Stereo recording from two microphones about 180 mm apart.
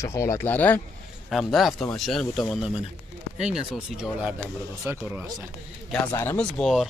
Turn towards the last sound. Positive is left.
turn(degrees=5)  # may be behind; listen again after turning